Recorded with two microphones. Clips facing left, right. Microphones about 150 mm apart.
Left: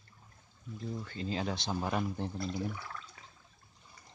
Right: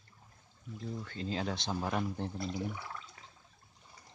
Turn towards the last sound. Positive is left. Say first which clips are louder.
# left 1 dB
turn(degrees=-20)  # may be behind; listen again after turning